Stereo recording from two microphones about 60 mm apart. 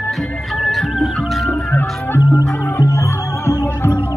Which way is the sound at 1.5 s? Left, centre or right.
Left.